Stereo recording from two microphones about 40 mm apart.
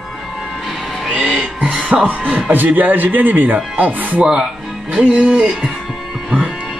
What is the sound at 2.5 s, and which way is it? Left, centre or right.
A man's voice, right.